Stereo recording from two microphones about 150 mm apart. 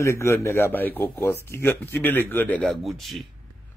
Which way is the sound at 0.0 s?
20° left (ahead or behind).